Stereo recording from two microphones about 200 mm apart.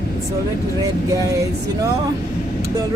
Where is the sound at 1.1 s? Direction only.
15° right (ahead or behind).